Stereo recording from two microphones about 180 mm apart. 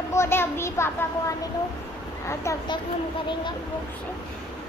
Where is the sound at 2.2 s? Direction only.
15° left (ahead or behind).